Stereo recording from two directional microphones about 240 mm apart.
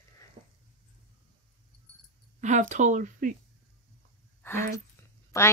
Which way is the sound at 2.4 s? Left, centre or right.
Right.